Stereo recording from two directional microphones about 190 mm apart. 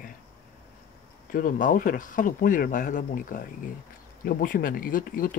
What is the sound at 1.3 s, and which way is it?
Speech, 45° left (ahead or behind).